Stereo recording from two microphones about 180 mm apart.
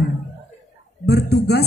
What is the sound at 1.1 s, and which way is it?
Speech, 65° left (ahead or behind).